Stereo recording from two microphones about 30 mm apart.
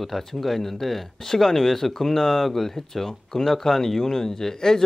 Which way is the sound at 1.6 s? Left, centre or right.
Centre.